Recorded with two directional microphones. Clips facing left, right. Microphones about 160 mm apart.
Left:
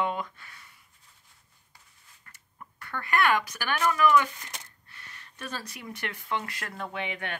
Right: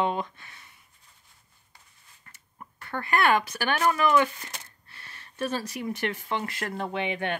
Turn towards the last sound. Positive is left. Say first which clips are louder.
# right 5 dB
turn(degrees=-30)  # may be behind; listen again after turning